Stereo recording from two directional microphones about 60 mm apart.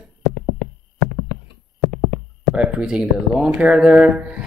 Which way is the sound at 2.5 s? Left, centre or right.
Centre.